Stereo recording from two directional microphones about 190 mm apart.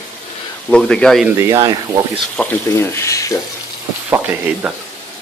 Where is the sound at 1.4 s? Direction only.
15° right (ahead or behind).